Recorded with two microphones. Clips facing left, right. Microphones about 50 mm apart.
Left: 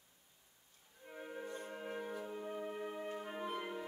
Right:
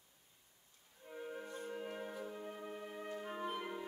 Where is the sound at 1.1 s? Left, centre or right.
Centre.